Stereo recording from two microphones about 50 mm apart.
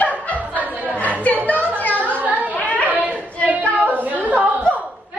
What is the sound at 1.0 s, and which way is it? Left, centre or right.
Chatter, left.